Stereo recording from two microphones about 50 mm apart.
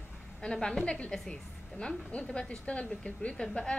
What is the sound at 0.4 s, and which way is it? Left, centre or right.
A woman's voice, centre.